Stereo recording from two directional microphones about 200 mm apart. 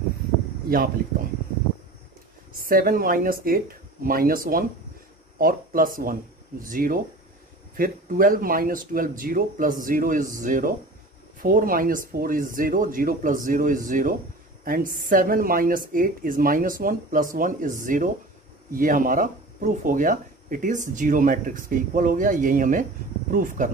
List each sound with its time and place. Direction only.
2.5 s a woman's voice: 45° right (ahead or behind)